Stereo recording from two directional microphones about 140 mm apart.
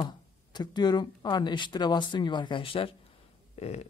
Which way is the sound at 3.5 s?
50° left (ahead or behind).